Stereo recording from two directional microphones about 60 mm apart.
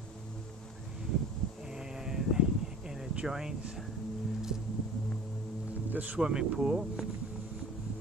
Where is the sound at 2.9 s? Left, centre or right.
Centre.